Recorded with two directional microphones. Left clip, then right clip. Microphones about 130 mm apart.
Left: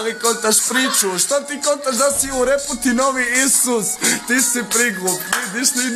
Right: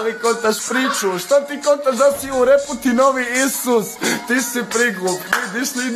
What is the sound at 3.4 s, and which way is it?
Music, 20° right (ahead or behind).